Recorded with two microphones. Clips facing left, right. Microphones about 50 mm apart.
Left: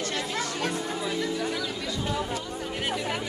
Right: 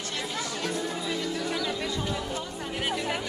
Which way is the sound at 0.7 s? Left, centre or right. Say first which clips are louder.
Left 1 dB; centre.